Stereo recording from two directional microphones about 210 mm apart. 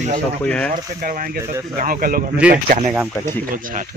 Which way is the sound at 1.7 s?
45° right (ahead or behind).